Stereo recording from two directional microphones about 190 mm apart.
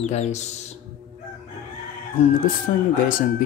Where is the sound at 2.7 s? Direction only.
45° left (ahead or behind).